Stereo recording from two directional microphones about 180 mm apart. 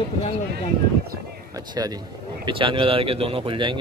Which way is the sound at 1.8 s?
20° right (ahead or behind).